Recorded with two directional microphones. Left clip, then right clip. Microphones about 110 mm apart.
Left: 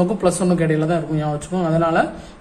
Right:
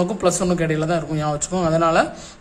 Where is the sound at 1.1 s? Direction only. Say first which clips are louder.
Even; 35° right (ahead or behind).